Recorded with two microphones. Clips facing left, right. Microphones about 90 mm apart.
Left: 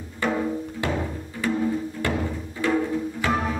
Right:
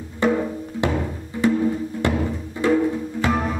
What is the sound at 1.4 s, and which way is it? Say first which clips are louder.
Music: right 6 dB; 20° right (ahead or behind).